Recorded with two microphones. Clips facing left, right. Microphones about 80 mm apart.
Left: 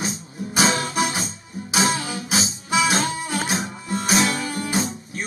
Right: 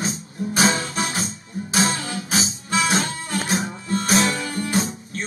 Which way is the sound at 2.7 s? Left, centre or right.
Centre.